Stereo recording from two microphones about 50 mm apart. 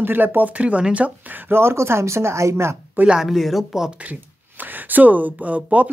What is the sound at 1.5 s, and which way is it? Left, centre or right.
Speech, right.